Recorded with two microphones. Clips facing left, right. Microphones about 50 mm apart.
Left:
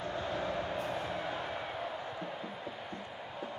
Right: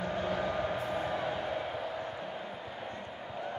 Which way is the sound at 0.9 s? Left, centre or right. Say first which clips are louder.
Right 3 dB; right.